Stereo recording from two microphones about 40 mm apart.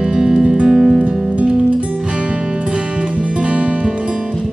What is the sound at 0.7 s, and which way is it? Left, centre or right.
Music, centre.